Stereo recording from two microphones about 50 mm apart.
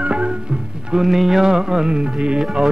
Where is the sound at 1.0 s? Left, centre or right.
Centre.